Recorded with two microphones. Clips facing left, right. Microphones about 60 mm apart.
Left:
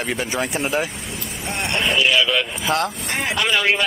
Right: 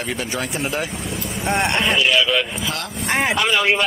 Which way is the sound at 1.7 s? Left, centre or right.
Centre.